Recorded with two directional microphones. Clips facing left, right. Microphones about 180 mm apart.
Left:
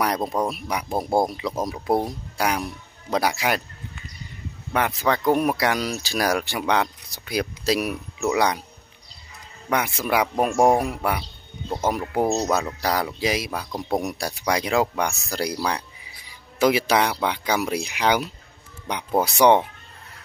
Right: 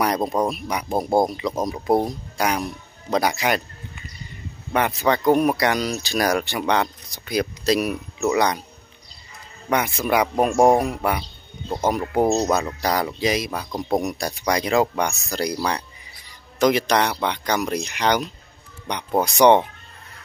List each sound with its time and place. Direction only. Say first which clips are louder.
0.5 s speech: right 2 dB; 5° left (ahead or behind)
4.7 s speech: right 2 dB; centre (ahead or behind)
9.7 s speech: right 2 dB; 5° left (ahead or behind)